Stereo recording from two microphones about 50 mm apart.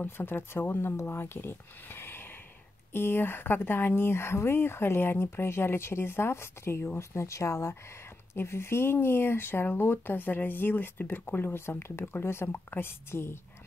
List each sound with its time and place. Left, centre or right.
0.0 s speech: left
7.0 s speech: left
8.4 s speech: left